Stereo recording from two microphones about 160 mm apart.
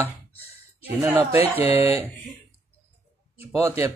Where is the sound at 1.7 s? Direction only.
35° left (ahead or behind).